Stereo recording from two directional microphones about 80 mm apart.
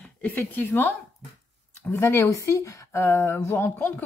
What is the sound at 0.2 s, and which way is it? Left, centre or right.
A woman's voice, left.